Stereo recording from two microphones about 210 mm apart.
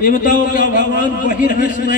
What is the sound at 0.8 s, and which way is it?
Speech, 55° right (ahead or behind).